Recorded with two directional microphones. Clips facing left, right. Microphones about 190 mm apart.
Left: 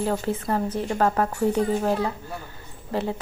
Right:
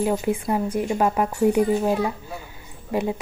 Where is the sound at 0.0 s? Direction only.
15° right (ahead or behind).